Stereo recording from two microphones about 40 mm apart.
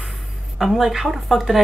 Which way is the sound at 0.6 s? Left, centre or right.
Centre.